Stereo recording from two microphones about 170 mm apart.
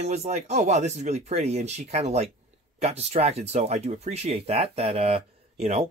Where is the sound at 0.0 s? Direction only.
40° right (ahead or behind).